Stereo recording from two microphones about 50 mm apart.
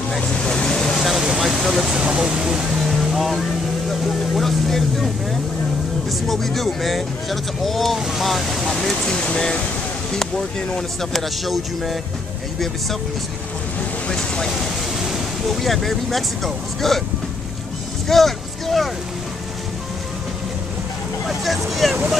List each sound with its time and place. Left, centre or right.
0.3 s vehicle: centre
0.9 s a sound: centre
2.0 s speech: centre
2.8 s vehicle: centre
6.0 s speech: centre
8.6 s a sound: centre
9.1 s speech: centre
14.1 s speech: centre
15.0 s speech: centre
18.0 s vehicle: centre
21.3 s speech: centre